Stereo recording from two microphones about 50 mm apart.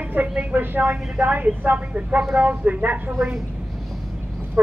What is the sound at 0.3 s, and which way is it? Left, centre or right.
Speech, right.